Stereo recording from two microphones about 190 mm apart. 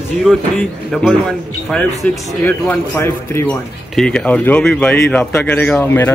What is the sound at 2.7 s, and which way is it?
Speech, 10° left (ahead or behind).